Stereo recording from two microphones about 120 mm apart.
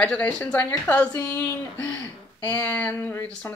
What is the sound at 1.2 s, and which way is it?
Speech, 25° left (ahead or behind).